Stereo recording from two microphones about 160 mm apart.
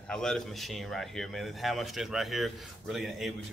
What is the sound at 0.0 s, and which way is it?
Speech, 5° left (ahead or behind).